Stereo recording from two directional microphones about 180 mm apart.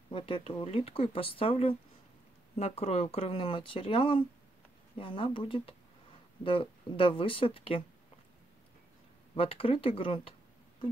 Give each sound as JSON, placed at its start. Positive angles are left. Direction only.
{"t": 0.1, "sound": "speech", "side_deg": 30}
{"t": 9.3, "sound": "speech", "side_deg": 30}